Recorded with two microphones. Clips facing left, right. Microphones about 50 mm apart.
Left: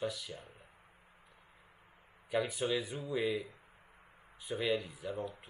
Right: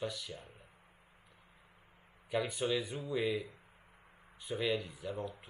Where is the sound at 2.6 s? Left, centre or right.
Left.